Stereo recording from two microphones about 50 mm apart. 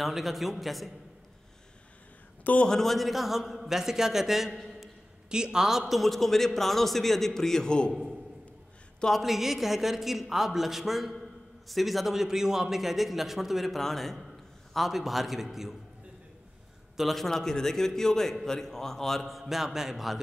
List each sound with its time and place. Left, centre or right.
0.0 s a man's voice: centre
2.5 s a man's voice: left
2.8 s a man's voice: centre
9.1 s a man's voice: centre
16.9 s a man's voice: centre